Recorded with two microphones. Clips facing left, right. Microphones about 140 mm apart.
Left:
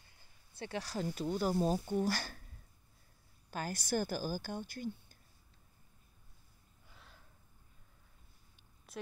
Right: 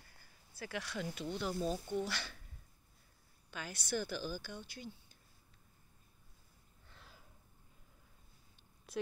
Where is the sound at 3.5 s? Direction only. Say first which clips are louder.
Left 4 dB; 45° left (ahead or behind).